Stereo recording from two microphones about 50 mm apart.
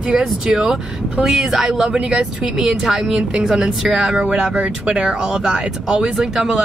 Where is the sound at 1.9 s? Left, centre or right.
Centre.